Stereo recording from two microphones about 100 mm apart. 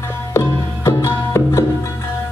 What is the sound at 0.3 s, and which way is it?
Music, 25° left (ahead or behind).